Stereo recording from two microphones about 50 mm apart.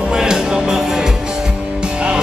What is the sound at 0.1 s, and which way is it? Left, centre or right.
Music, centre.